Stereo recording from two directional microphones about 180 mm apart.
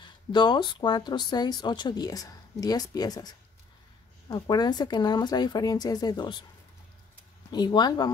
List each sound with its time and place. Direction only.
0.0 s speech: 25° left (ahead or behind)
7.5 s speech: 25° left (ahead or behind)